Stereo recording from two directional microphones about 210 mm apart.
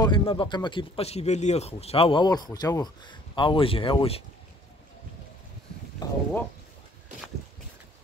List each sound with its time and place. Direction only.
0.0 s a man's voice: 25° left (ahead or behind)
6.0 s a man's voice: 20° left (ahead or behind)